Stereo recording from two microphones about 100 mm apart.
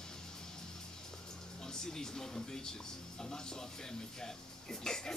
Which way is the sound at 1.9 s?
5° left (ahead or behind).